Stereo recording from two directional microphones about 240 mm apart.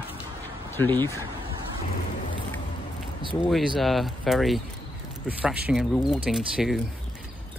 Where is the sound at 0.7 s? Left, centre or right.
Centre.